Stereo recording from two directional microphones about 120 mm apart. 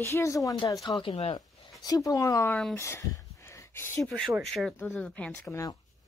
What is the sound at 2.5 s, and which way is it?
Speech, 10° left (ahead or behind).